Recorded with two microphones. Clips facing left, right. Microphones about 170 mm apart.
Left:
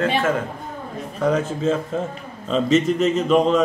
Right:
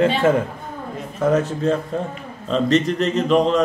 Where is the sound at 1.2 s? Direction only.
Centre (ahead or behind).